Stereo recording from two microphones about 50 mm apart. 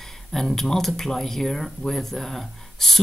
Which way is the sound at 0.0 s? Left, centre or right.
Centre.